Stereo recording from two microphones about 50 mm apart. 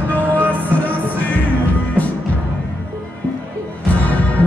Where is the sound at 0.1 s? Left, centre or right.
Left.